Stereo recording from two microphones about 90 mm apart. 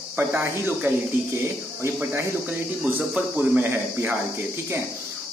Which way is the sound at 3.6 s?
30° right (ahead or behind).